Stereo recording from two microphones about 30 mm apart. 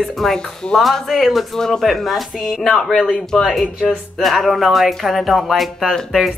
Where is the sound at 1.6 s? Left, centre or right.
Centre.